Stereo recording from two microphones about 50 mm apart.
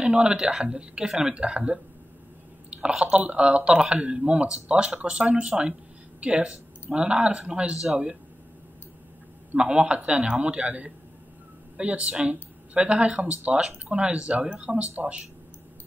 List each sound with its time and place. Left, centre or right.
0.0 s speech: right
2.9 s speech: centre
9.6 s speech: right